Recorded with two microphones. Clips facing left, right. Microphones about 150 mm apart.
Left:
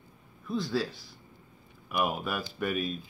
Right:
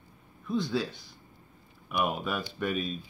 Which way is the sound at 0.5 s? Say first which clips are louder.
Right 1 dB; centre (ahead or behind).